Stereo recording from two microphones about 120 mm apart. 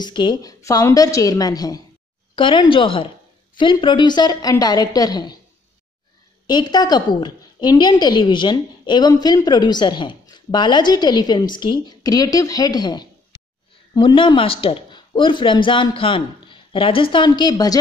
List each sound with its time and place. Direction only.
0.0 s a woman's voice: 40° left (ahead or behind)
2.3 s a woman's voice: 45° left (ahead or behind)
6.4 s a woman's voice: 35° left (ahead or behind)